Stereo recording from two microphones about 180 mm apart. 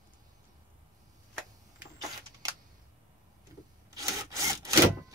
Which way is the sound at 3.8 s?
20° right (ahead or behind).